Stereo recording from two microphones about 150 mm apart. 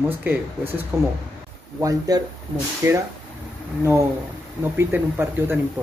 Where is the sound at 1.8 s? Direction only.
25° right (ahead or behind).